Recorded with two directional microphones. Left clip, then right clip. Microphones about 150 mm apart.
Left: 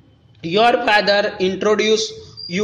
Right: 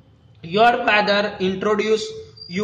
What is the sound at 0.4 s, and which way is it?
Speech, 35° left (ahead or behind).